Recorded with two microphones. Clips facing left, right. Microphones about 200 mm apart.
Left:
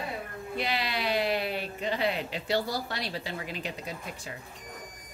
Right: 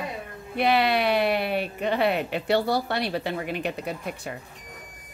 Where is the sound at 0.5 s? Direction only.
60° right (ahead or behind).